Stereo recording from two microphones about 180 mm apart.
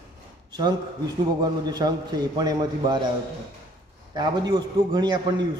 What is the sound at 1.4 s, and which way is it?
A man's voice, 20° right (ahead or behind).